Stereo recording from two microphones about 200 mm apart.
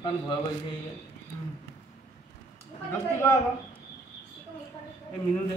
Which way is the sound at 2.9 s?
15° left (ahead or behind).